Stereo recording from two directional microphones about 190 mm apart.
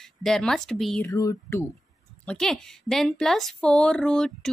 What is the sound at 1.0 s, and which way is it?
Speech, 15° left (ahead or behind).